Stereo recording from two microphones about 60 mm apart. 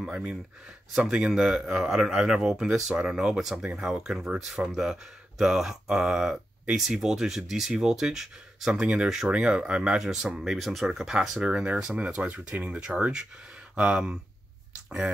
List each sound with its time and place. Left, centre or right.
0.1 s speech: centre
0.9 s speech: centre
11.4 s speech: centre